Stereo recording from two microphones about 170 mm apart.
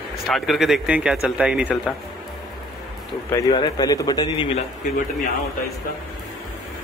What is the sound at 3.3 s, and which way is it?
Speech, 25° left (ahead or behind).